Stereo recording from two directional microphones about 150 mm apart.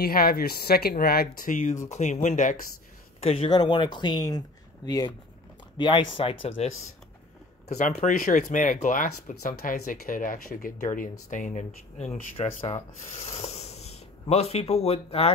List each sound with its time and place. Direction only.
0.0 s speech: 80° left; by 2.6 s 55° left (ahead or behind)
3.2 s speech: 40° left (ahead or behind)
3.4 s speech: 30° left (ahead or behind)